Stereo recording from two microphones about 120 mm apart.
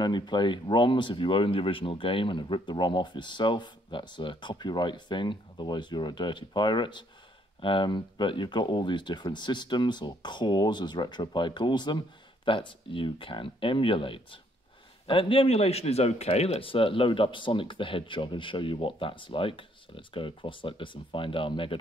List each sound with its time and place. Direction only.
0.0 s speech: 40° left (ahead or behind)